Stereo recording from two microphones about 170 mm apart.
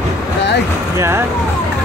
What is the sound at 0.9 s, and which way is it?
Speech, 15° right (ahead or behind).